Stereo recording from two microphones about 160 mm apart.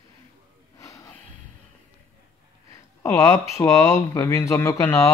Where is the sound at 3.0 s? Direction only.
20° left (ahead or behind).